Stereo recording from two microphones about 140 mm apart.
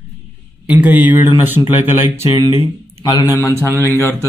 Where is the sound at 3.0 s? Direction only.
25° left (ahead or behind).